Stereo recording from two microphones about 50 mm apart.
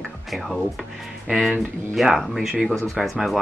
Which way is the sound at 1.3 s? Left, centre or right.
Centre.